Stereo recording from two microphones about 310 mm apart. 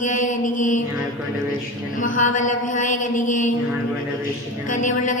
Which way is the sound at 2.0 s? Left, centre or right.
Left.